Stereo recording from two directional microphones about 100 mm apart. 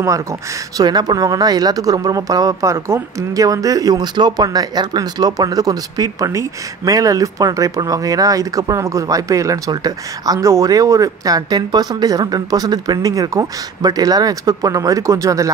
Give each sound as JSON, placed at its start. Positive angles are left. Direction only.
{"t": 0.7, "sound": "speech", "side_deg": -45}